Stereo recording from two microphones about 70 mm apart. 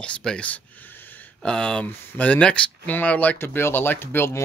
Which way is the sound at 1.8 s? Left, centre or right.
Left.